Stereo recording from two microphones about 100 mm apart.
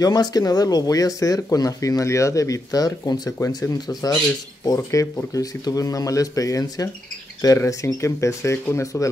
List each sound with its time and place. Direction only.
0.0 s speech: 40° left (ahead or behind)
3.7 s speech: 40° left (ahead or behind)
4.6 s speech: 30° left (ahead or behind)